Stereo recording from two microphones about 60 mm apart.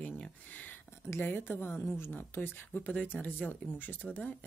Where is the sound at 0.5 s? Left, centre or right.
Left.